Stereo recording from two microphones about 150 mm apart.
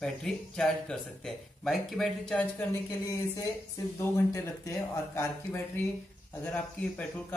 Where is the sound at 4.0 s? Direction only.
20° left (ahead or behind).